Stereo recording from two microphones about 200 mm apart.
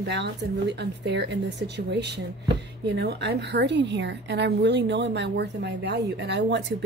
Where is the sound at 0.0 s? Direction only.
60° right (ahead or behind).